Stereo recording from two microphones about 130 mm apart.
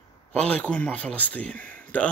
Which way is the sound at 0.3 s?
10° left (ahead or behind).